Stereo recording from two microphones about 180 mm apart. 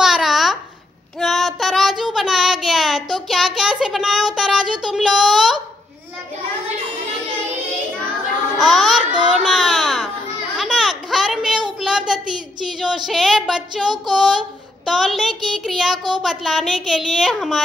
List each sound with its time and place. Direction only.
0.0 s babbling: centre (ahead or behind)
1.2 s child singing: centre (ahead or behind)
8.5 s a sound: centre (ahead or behind)
11.8 s child singing: 5° right (ahead or behind)
12.6 s speech: centre (ahead or behind)